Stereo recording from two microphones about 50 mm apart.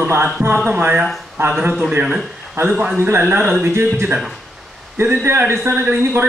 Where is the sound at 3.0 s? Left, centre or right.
Right.